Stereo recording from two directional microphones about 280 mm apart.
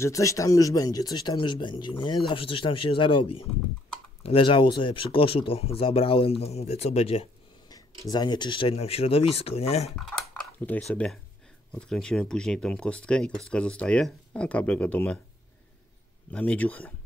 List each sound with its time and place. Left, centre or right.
0.0 s speech: centre
9.9 s typing: centre
11.7 s speech: centre
16.3 s speech: centre